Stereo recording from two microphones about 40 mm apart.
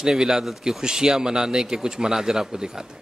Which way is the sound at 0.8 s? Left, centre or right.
Centre.